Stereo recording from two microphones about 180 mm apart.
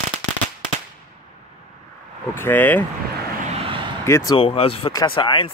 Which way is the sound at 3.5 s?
30° right (ahead or behind).